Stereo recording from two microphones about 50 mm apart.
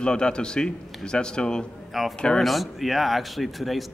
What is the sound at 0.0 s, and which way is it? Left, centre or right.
A man's voice, centre.